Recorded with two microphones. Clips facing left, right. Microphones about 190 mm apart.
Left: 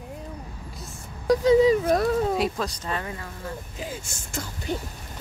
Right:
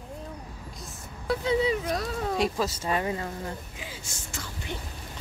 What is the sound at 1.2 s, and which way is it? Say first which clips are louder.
Speech: left 8 dB; 40° left (ahead or behind).